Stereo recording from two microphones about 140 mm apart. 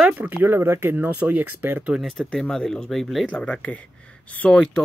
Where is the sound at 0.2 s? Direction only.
15° right (ahead or behind).